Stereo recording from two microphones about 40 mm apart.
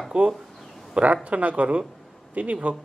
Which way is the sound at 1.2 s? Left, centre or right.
Right.